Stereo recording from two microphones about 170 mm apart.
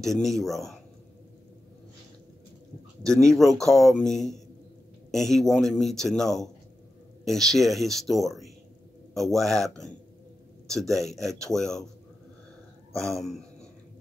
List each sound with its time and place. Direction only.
0.0 s a man's voice: centre (ahead or behind)
3.3 s a man's voice: centre (ahead or behind)
12.9 s a man's voice: centre (ahead or behind)